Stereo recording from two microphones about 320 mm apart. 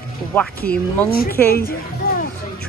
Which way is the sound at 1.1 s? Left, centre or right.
Left.